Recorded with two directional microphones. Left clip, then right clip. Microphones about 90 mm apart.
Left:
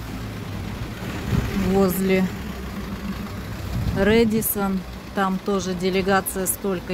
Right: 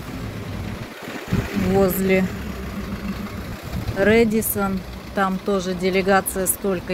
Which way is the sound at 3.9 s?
30° left (ahead or behind).